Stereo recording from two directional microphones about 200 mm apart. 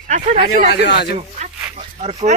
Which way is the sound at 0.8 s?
55° left (ahead or behind).